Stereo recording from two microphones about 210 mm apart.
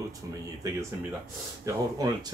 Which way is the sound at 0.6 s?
15° right (ahead or behind).